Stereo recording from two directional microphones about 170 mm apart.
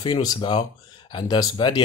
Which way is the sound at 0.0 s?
25° left (ahead or behind).